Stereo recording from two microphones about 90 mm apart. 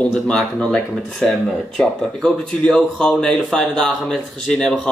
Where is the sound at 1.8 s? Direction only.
5° left (ahead or behind).